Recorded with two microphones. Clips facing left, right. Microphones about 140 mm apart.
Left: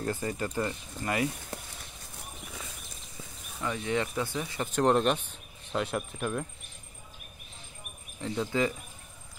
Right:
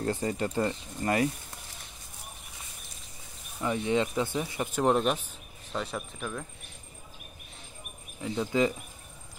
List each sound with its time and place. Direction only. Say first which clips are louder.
0.0 s speech: right 2 dB; 30° right (ahead or behind)
3.6 s speech: right 3 dB; 20° right (ahead or behind)
4.6 s speech: left 1 dB; 5° right (ahead or behind)
8.2 s speech: right 1 dB; 10° right (ahead or behind)